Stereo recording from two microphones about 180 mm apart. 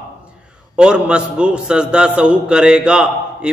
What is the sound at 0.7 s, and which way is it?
A man's voice, 5° right (ahead or behind).